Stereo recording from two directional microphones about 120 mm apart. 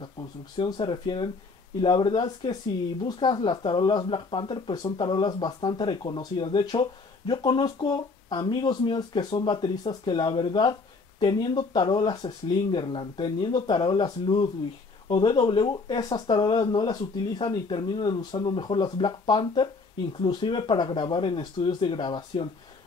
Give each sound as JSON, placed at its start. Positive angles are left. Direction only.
{"t": 0.6, "sound": "speech", "side_deg": 40}